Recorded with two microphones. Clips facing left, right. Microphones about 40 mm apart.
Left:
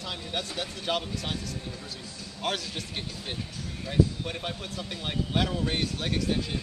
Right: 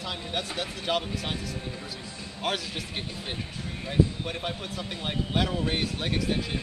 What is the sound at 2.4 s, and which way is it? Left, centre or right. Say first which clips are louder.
Speech: right 1 dB; centre.